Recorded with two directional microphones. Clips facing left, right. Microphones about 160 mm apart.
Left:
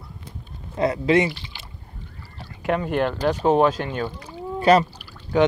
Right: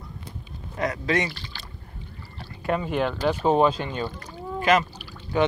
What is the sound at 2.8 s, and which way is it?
Speech, centre (ahead or behind).